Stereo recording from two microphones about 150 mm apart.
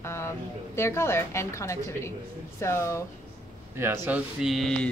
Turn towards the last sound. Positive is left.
turn(degrees=0)  # may be behind; listen again after turning